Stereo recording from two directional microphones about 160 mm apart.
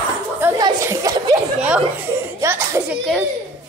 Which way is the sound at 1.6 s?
10° right (ahead or behind).